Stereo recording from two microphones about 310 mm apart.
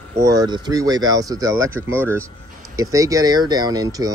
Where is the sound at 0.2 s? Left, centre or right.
Centre.